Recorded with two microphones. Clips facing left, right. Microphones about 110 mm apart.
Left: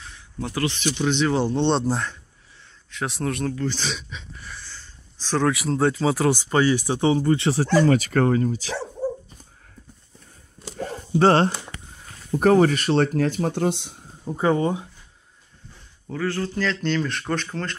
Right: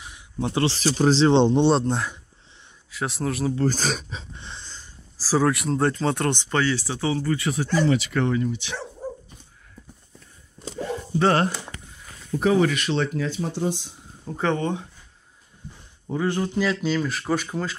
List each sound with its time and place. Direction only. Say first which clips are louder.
0.0 s a sound: right 3 dB; 15° right (ahead or behind)
0.5 s speech: right 2 dB; 30° right (ahead or behind)
1.6 s speech: right 2 dB; centre (ahead or behind)
3.5 s speech: right 4 dB; 45° right (ahead or behind); by 4.8 s 20° right (ahead or behind)
5.2 s speech: right 1 dB; 5° right (ahead or behind); by 7.7 s 30° left (ahead or behind)
7.7 s speech: left 3 dB; 45° left (ahead or behind)
10.8 s a sound: left 3 dB; 40° left (ahead or behind)
12.4 s speech: left 3 dB; 50° left (ahead or behind)
13.6 s speech: left 3 dB; 65° left (ahead or behind)
14.2 s speech: left 3 dB; 10° left (ahead or behind)
16.1 s speech: right 2 dB; 20° right (ahead or behind)